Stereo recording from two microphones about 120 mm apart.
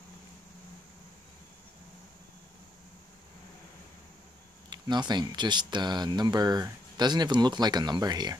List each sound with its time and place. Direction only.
4.6 s speech: 35° right (ahead or behind)